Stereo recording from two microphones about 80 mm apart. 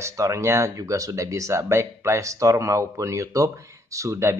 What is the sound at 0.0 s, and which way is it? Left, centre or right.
Speech, right.